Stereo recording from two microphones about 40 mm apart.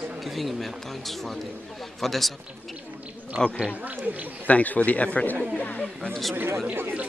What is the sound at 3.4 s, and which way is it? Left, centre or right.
Speech, centre.